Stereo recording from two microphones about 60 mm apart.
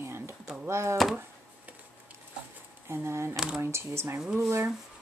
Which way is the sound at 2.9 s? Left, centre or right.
Right.